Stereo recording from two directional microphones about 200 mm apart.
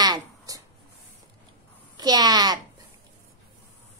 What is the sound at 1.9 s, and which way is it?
Speech, 20° right (ahead or behind).